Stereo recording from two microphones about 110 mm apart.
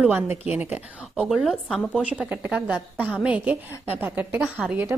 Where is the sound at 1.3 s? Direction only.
Centre (ahead or behind).